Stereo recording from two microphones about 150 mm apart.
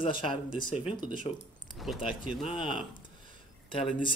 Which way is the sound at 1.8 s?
5° right (ahead or behind).